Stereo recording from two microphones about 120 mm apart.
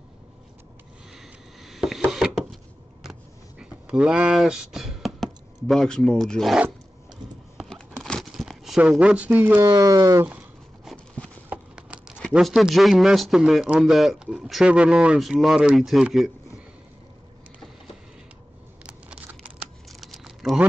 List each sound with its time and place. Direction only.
1.1 s a sound: centre (ahead or behind)
7.7 s crumpling: 5° left (ahead or behind); by 9.6 s 15° right (ahead or behind)
9.6 s speech: 30° right (ahead or behind)
11.4 s clip-clop: 10° right (ahead or behind)
12.2 s speech: centre (ahead or behind)
18.9 s a sound: 10° right (ahead or behind)
19.9 s computer keyboard: centre (ahead or behind)